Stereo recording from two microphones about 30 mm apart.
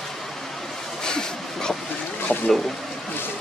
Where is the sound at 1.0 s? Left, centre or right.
Left.